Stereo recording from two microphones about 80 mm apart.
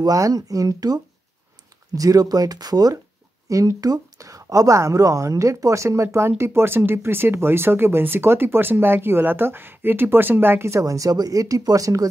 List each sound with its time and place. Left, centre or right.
0.0 s speech: right
3.4 s speech: right